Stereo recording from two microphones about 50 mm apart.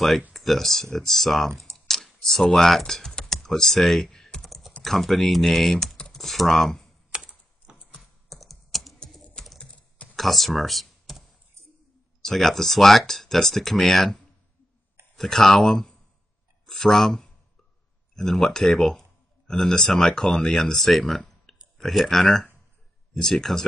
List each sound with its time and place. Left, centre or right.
0.3 s speech: centre
1.9 s computer keyboard: centre
2.4 s speech: centre
3.1 s computer keyboard: centre
3.3 s typing: centre
4.8 s speech: centre
7.1 s typing: centre
8.0 s computer keyboard: centre
9.6 s computer keyboard: left
10.1 s computer keyboard: centre
12.2 s speech: centre
15.1 s speech: centre